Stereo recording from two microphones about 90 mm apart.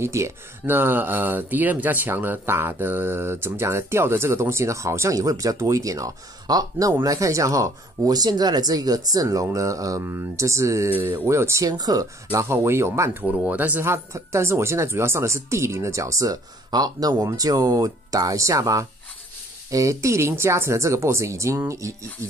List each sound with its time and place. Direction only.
0.0 s speech: 30° right (ahead or behind)
11.7 s speech: 45° right (ahead or behind)
12.4 s speech: 30° right (ahead or behind)
13.5 s speech: 20° right (ahead or behind)